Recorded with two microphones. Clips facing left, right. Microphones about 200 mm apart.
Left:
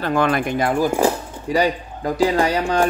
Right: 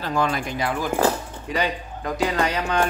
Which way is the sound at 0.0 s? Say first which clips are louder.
Left 5 dB; 60° left (ahead or behind).